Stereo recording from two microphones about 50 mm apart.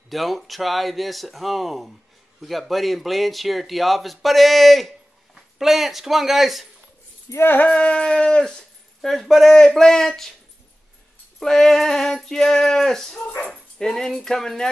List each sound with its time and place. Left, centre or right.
0.1 s speech: centre
7.6 s dog: left
9.0 s speech: centre
9.5 s a sound: centre
11.4 s a sound: centre
13.5 s speech: centre